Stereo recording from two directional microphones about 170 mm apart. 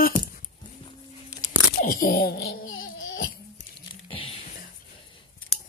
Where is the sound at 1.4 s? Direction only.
55° left (ahead or behind).